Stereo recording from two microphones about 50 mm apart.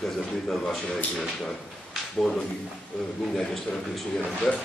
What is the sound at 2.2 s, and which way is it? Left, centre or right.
Speech, centre.